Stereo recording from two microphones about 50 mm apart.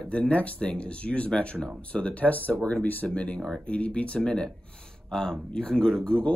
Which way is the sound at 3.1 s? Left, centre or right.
Left.